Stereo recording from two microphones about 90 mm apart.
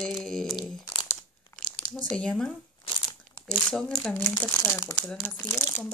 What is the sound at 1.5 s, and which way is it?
Crumpling, 30° left (ahead or behind).